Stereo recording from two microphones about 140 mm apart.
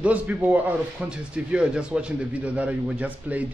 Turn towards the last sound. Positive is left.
turn(degrees=-10)  # may be behind; listen again after turning